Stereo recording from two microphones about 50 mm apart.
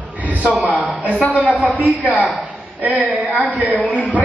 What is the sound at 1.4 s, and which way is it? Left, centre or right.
Speech, right.